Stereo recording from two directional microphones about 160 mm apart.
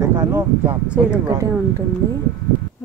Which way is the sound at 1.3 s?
20° right (ahead or behind).